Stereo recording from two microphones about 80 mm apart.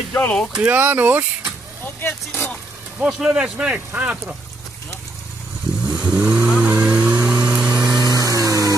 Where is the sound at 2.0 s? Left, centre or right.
Left.